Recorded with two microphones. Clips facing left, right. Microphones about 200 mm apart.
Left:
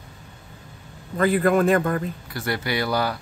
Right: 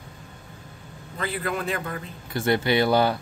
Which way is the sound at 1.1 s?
50° left (ahead or behind).